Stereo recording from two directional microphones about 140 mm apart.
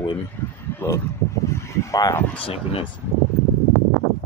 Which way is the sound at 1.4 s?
20° left (ahead or behind).